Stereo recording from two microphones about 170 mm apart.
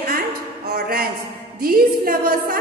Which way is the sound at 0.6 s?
60° right (ahead or behind).